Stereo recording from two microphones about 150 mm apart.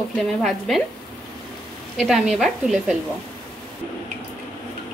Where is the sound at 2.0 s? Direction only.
Centre (ahead or behind).